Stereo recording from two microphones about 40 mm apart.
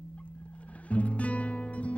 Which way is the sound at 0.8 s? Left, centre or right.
Left.